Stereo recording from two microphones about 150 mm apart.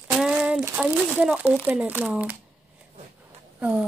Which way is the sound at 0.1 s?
5° right (ahead or behind).